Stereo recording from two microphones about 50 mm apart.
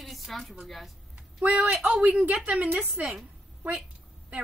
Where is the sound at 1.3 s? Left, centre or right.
Right.